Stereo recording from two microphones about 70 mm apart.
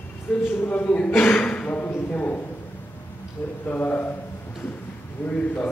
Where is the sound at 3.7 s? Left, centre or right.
Left.